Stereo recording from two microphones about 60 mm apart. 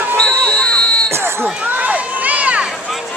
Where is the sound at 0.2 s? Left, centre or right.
Centre.